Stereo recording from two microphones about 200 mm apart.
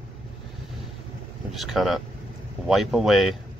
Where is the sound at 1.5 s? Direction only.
Centre (ahead or behind).